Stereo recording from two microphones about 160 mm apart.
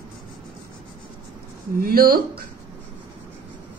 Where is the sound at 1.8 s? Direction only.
70° right (ahead or behind).